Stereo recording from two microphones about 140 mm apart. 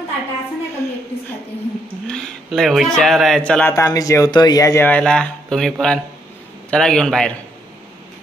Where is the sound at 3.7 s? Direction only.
25° left (ahead or behind).